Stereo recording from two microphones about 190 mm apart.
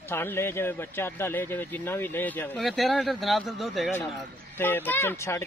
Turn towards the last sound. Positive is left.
turn(degrees=15)  # may be behind; listen again after turning